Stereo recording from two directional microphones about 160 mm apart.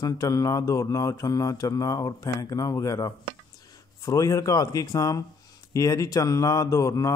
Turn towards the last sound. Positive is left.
turn(degrees=20)  # may be behind; listen again after turning